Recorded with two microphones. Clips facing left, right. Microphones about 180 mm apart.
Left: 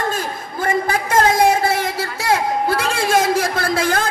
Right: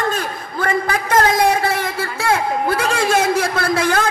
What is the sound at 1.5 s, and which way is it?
Speech, 60° right (ahead or behind).